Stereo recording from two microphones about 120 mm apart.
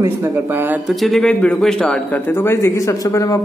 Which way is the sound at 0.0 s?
20° right (ahead or behind).